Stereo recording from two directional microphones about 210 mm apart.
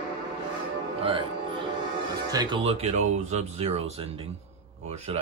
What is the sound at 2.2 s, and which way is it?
Speech, 20° right (ahead or behind).